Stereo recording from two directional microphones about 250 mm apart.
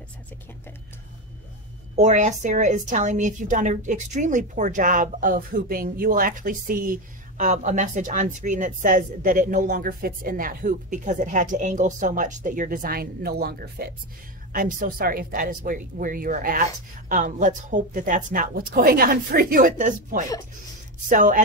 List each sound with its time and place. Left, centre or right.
2.0 s a woman's voice: right